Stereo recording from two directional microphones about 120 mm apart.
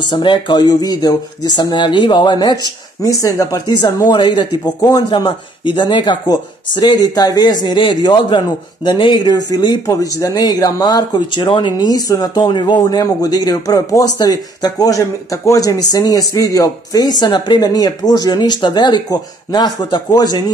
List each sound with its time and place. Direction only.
0.1 s a man's voice: 40° left (ahead or behind)